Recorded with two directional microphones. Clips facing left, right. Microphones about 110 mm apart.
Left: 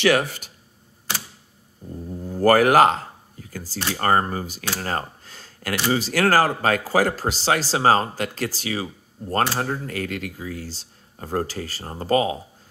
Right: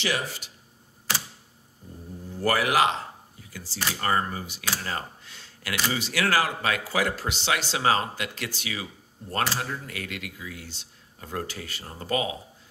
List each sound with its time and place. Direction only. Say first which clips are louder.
0.0 s speech: left 10 dB; 60° left (ahead or behind)
2.2 s speech: left 9 dB; 45° left (ahead or behind)